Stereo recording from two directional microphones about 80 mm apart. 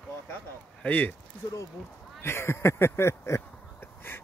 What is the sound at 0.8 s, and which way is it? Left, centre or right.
Speech, left.